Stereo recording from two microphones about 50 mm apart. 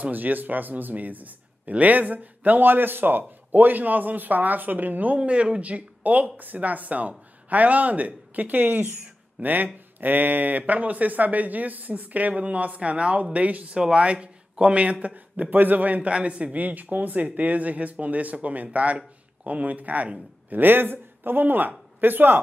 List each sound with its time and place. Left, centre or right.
0.0 s a man's voice: right
16.5 s a man's voice: right